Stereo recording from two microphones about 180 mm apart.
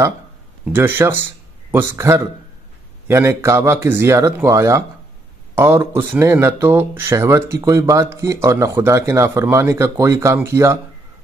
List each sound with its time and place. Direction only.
0.7 s speech: 10° right (ahead or behind)